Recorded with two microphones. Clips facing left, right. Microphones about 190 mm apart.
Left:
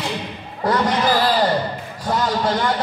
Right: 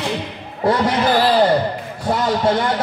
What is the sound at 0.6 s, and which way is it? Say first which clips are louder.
Speech: right 2 dB; 25° right (ahead or behind).